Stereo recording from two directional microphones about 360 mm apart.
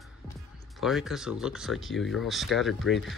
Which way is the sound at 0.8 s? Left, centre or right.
Centre.